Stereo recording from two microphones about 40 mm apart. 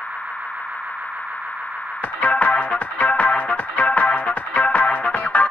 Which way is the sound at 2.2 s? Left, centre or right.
Left.